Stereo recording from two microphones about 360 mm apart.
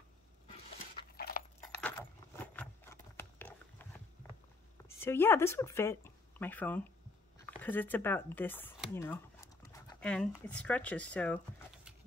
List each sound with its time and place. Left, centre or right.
1.1 s a sound: left
1.8 s keys jangling: centre
4.8 s speech: centre